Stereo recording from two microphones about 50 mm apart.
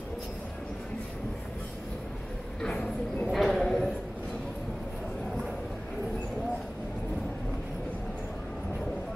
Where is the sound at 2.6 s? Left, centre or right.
Centre.